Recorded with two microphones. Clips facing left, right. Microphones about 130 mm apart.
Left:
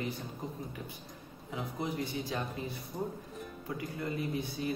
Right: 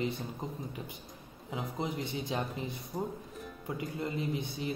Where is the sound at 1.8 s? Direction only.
20° right (ahead or behind).